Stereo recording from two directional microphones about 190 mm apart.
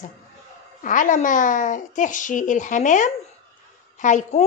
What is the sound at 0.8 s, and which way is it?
A child's voice, 45° left (ahead or behind).